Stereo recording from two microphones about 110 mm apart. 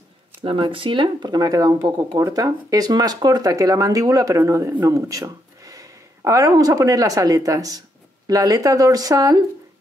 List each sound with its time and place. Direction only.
0.4 s speech: 55° right (ahead or behind); by 9.4 s 35° right (ahead or behind)